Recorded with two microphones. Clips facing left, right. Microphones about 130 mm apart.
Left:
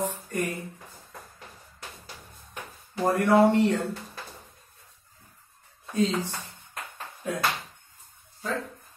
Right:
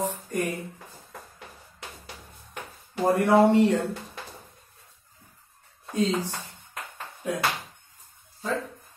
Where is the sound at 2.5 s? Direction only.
10° right (ahead or behind).